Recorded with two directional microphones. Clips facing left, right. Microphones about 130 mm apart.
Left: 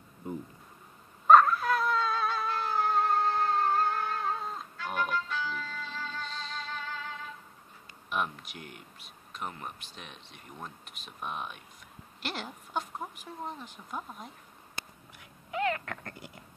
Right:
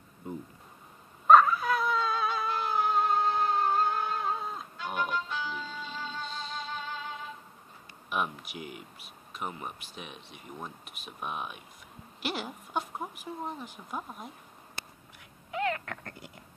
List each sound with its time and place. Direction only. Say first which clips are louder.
1.2 s dog: even; centre (ahead or behind)
2.5 s music: right 1 dB; 15° right (ahead or behind)
4.7 s music: even; 15° right (ahead or behind)
6.3 s music: right 1 dB; 5° right (ahead or behind)
6.7 s music: right 1 dB; 20° right (ahead or behind)
8.1 s speech: right 1 dB; 5° right (ahead or behind)